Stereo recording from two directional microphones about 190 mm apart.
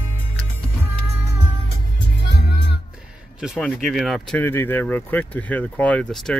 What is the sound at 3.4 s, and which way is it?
Speech, centre (ahead or behind).